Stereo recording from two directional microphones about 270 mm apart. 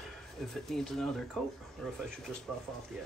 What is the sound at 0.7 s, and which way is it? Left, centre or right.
Speech, centre.